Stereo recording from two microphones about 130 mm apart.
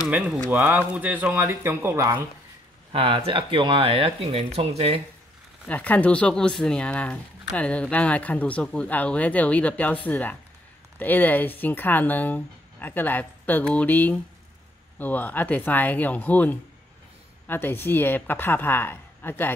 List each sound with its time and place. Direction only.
0.5 s speech: 15° right (ahead or behind)
2.9 s speech: 45° right (ahead or behind)
5.7 s speech: 10° left (ahead or behind)